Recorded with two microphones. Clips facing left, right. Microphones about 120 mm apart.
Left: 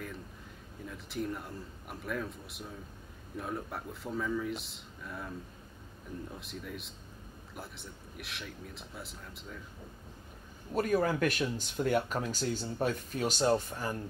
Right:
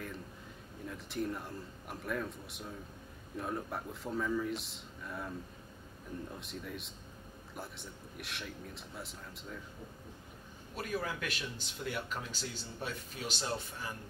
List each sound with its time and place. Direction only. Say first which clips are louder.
0.8 s speech: even; centre (ahead or behind)
6.3 s speech: left 1 dB; centre (ahead or behind)
10.7 s speech: left 9 dB; 45° left (ahead or behind)